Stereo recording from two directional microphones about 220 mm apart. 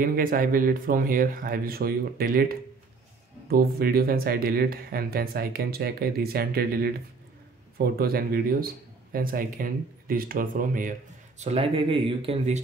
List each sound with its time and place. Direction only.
0.0 s speech: 40° right (ahead or behind)